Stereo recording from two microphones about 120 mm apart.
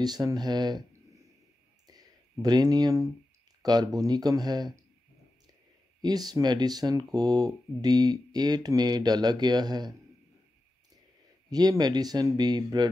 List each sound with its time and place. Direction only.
0.0 s speech: 35° right (ahead or behind)
2.4 s speech: 35° right (ahead or behind)
6.0 s speech: 35° right (ahead or behind)
11.5 s speech: 35° right (ahead or behind)